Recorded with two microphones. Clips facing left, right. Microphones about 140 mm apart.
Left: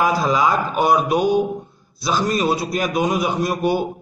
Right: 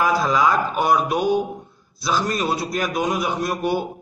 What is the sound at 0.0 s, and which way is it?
A man's voice, 15° left (ahead or behind).